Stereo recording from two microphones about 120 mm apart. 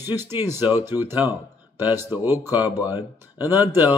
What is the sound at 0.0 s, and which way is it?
Speech, 20° right (ahead or behind).